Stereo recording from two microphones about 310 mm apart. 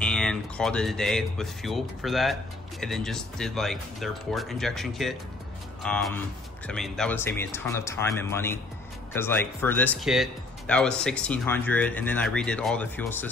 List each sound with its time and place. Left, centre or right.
0.0 s speech: centre